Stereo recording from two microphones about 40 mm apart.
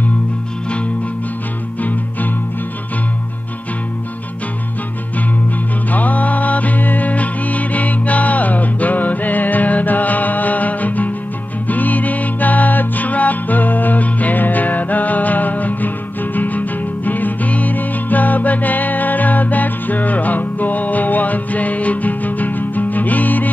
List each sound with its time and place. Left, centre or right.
1.8 s music: left
5.9 s music: left